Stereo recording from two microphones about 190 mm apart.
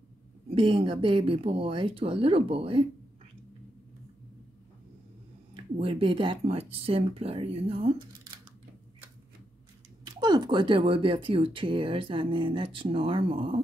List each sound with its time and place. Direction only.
0.6 s speech: 25° right (ahead or behind)
5.5 s speech: 30° right (ahead or behind)
10.0 s speech: 20° right (ahead or behind)